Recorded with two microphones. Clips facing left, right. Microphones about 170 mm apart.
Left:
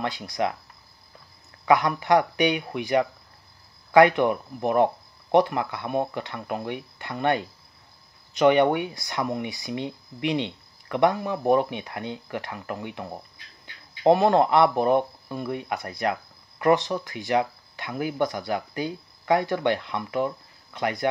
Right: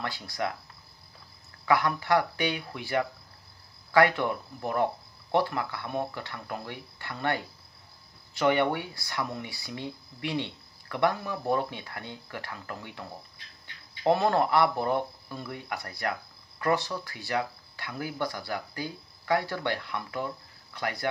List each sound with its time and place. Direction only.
0.0 s speech: 20° left (ahead or behind)
1.7 s speech: 20° left (ahead or behind)